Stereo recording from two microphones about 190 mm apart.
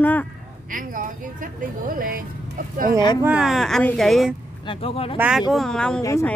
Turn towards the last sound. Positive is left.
turn(degrees=15)  # may be behind; listen again after turning